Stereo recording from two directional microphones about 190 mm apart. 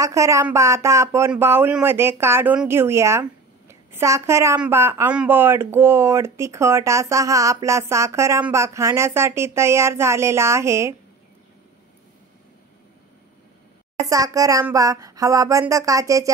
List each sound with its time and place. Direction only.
0.0 s speech: 15° right (ahead or behind)
14.0 s speech: 20° right (ahead or behind)